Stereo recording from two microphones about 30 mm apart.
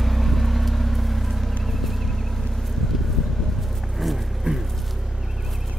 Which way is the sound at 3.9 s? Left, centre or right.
Centre.